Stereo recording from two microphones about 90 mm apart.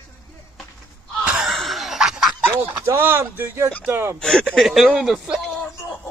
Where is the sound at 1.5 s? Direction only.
Centre (ahead or behind).